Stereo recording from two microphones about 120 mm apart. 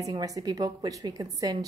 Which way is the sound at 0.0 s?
30° right (ahead or behind).